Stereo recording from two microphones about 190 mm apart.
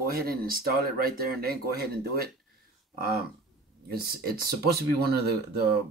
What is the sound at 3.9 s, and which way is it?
Speech, 55° right (ahead or behind).